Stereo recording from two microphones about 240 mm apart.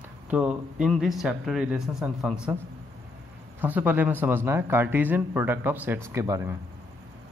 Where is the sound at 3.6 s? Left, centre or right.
Centre.